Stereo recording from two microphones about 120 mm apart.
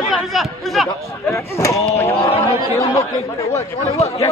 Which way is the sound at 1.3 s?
25° left (ahead or behind).